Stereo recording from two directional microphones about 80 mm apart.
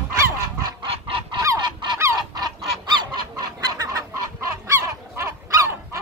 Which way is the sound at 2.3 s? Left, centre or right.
Right.